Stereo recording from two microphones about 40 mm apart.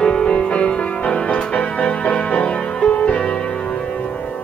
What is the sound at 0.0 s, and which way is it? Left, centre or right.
Music, left.